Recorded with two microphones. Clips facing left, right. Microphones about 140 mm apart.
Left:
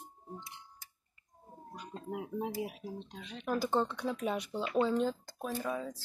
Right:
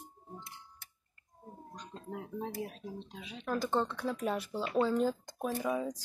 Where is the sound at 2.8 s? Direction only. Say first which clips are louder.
Left 1 dB; centre (ahead or behind).